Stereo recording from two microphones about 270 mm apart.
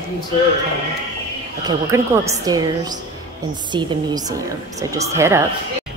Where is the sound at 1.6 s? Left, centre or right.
Centre.